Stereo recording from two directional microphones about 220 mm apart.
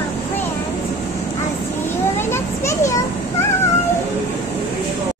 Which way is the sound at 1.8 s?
10° left (ahead or behind).